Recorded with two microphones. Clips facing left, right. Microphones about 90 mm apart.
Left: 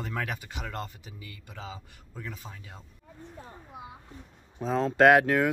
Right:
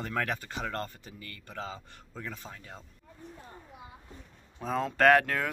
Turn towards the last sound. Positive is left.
turn(degrees=15)  # may be behind; listen again after turning